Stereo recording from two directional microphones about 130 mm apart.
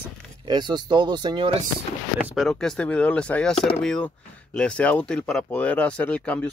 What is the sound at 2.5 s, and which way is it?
Speech, 5° left (ahead or behind).